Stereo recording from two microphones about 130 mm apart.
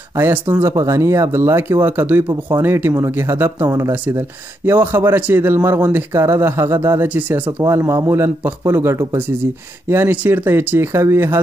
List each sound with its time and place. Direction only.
0.2 s a man's voice: 20° right (ahead or behind)